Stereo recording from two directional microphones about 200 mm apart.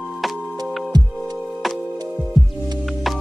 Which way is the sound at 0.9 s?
20° right (ahead or behind).